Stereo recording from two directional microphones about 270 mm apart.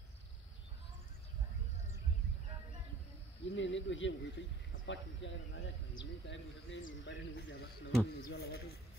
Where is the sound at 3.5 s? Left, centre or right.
Left.